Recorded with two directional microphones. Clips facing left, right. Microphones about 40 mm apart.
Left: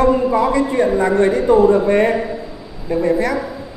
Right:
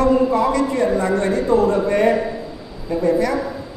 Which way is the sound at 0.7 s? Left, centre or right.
Left.